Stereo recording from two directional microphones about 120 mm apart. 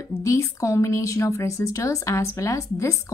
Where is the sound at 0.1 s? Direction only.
25° left (ahead or behind).